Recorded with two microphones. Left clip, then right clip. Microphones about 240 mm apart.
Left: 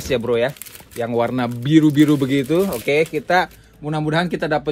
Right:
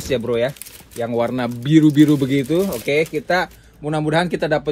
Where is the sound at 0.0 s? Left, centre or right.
Left.